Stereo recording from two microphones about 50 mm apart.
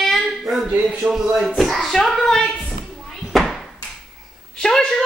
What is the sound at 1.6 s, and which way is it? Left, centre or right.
Speech, centre.